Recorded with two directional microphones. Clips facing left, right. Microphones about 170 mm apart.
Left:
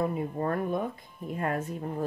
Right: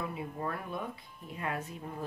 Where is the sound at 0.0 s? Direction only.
45° left (ahead or behind).